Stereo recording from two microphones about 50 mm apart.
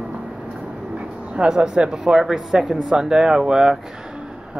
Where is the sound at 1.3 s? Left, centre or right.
Centre.